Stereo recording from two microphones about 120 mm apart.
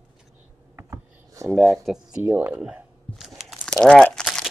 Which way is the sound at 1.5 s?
Centre (ahead or behind).